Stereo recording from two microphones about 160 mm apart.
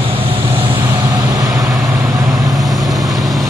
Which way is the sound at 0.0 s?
35° right (ahead or behind).